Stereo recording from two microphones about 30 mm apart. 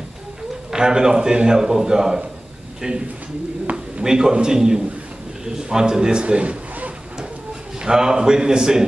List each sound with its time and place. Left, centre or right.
0.7 s a man's voice: right
2.8 s speech: right
3.7 s a man's voice: right
7.8 s a man's voice: right